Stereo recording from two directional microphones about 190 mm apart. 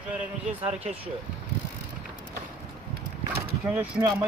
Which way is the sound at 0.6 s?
30° right (ahead or behind).